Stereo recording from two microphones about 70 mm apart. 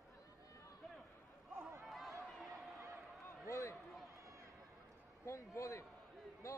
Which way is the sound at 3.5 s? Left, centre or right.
Left.